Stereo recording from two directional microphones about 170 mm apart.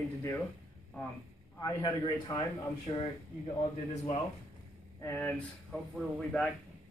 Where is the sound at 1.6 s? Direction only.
20° left (ahead or behind).